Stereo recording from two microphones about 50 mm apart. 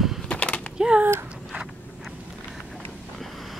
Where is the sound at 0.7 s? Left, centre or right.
Centre.